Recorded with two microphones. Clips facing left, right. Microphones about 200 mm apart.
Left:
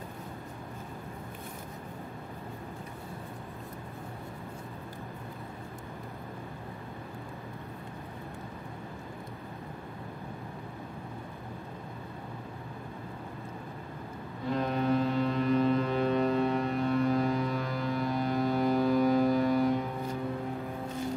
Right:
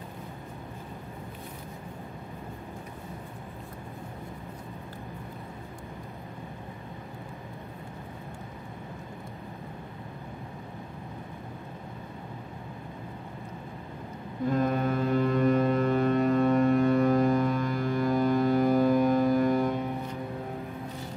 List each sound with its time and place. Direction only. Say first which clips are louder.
14.5 s foghorn: right 1 dB; 50° right (ahead or behind)